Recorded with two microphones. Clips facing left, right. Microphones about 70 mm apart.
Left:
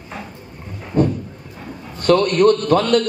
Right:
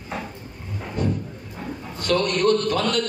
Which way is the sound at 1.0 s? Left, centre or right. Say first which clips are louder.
Left 8 dB; left.